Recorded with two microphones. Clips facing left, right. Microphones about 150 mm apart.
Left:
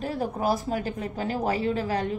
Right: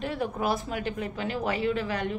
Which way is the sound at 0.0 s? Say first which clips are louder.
Left 2 dB; 35° left (ahead or behind).